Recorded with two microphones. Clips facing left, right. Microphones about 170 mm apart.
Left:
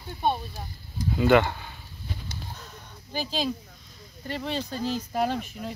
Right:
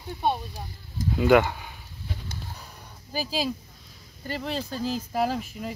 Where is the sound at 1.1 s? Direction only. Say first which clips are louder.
Right 1 dB; 5° right (ahead or behind).